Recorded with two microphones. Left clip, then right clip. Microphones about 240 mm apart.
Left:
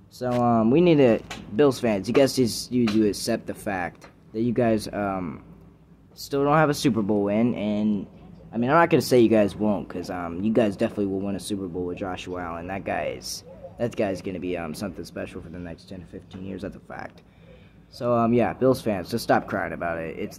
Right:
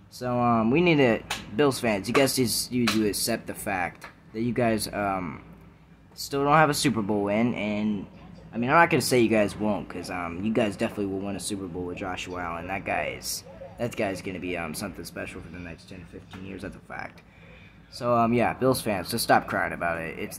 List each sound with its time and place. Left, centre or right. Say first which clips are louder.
0.2 s speech: left 2 dB; centre